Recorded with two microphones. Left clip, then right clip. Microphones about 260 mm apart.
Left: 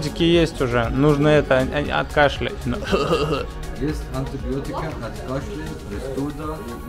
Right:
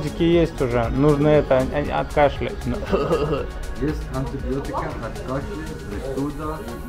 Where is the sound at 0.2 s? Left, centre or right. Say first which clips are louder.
Left 1 dB; centre.